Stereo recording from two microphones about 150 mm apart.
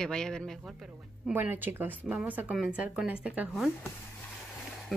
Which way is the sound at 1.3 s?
15° right (ahead or behind).